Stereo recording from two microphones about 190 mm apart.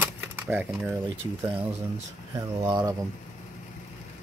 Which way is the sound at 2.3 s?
20° right (ahead or behind).